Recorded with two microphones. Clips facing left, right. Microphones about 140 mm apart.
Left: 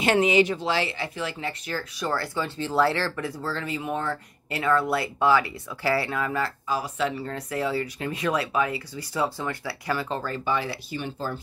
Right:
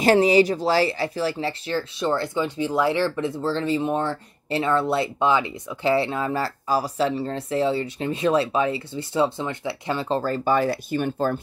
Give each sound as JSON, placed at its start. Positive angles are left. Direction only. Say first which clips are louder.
{"t": 0.0, "sound": "speech", "louder": "right 4 dB", "side_deg": -35}